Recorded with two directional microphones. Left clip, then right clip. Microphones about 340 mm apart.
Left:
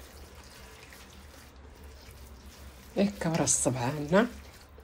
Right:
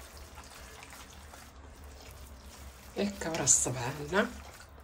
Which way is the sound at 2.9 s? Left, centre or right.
Centre.